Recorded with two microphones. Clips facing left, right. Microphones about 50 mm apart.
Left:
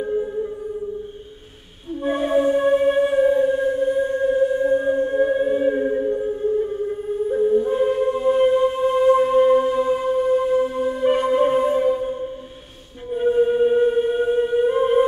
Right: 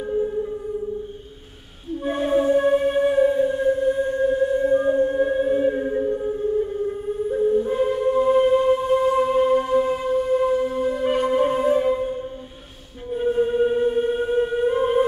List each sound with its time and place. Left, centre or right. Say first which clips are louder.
0.0 s music: even; centre
2.0 s music: left 1 dB; centre